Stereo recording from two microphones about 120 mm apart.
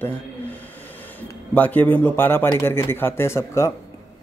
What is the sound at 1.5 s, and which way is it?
Speech, 15° left (ahead or behind).